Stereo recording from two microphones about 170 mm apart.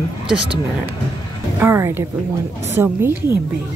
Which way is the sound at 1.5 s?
15° right (ahead or behind).